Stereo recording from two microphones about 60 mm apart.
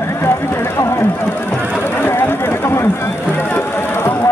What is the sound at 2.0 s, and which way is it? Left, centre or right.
Chatter, left.